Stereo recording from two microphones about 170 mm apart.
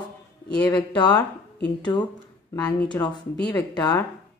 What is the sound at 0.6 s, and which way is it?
Speech, 10° left (ahead or behind).